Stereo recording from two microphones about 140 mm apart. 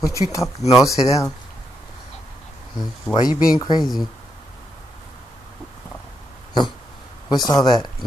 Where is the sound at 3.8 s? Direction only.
Centre (ahead or behind).